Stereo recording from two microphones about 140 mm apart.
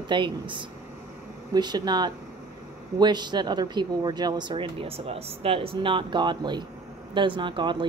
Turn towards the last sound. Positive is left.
turn(degrees=-35)  # may be behind; listen again after turning